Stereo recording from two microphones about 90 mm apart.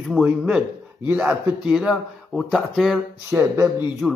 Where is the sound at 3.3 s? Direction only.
35° right (ahead or behind).